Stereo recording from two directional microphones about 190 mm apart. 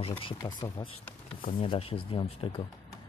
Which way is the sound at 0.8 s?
15° left (ahead or behind).